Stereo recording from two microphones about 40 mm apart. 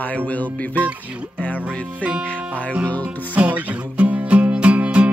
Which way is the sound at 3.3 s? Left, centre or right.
Right.